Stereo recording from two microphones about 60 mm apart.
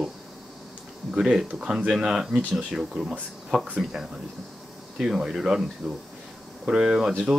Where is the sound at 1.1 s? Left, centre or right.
Centre.